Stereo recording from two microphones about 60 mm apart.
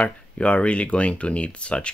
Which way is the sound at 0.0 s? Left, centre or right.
Left.